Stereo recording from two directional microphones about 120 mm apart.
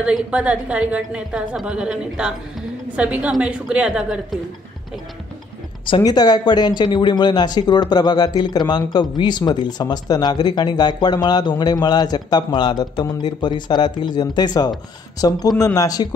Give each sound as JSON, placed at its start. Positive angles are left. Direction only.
{"t": 0.0, "sound": "a woman's voice", "side_deg": -10}
{"t": 5.9, "sound": "speech", "side_deg": 35}